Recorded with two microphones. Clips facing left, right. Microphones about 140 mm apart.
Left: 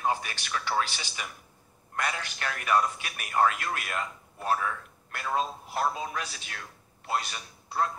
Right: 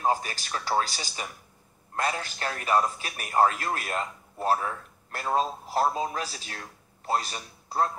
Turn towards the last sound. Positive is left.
turn(degrees=-35)  # may be behind; listen again after turning